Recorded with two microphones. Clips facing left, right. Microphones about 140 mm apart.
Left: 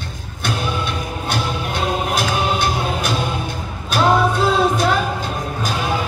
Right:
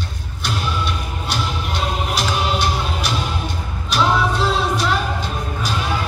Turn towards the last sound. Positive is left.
turn(degrees=50)  # may be behind; listen again after turning